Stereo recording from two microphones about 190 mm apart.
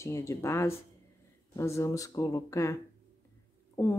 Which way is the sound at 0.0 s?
15° left (ahead or behind).